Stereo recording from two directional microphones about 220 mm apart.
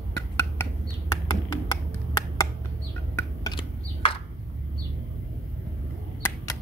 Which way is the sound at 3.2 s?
20° left (ahead or behind).